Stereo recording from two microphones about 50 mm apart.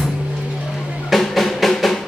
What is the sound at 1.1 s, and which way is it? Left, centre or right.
Drum, centre.